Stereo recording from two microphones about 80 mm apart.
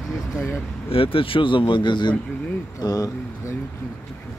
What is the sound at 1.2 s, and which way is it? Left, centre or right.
Speech, left.